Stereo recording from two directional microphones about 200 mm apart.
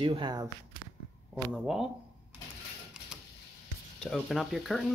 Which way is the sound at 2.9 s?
5° right (ahead or behind).